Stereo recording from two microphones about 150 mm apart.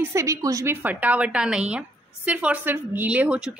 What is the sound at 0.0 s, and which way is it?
Speech, 20° right (ahead or behind).